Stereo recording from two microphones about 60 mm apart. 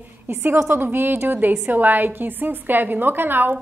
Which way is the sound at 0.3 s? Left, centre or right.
Right.